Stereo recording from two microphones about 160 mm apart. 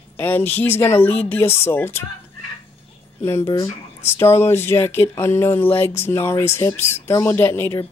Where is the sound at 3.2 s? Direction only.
20° left (ahead or behind).